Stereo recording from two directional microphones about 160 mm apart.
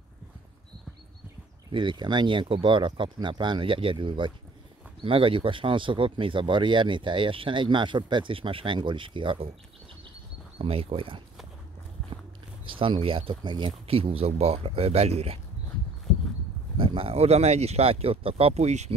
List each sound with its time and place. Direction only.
1.7 s speech: 30° right (ahead or behind)
10.6 s speech: 35° right (ahead or behind)
12.6 s speech: 35° right (ahead or behind)
16.7 s speech: 35° right (ahead or behind)